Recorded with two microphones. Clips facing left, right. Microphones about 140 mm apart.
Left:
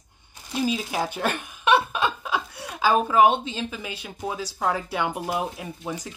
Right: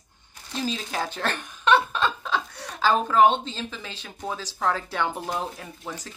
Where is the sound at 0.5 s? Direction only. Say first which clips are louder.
Left 4 dB; 10° left (ahead or behind).